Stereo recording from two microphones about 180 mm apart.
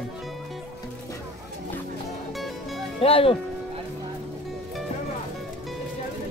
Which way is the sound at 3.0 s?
30° left (ahead or behind).